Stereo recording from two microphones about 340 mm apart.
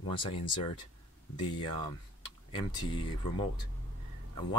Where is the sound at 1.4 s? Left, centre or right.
Centre.